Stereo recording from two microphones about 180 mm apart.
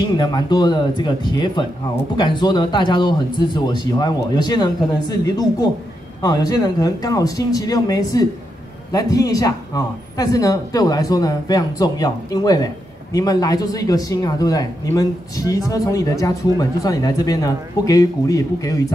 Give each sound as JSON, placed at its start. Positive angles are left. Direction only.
{"t": 0.2, "sound": "speech", "side_deg": 25}